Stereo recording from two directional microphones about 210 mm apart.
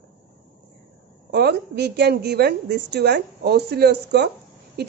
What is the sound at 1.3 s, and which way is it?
A woman's voice, 50° right (ahead or behind).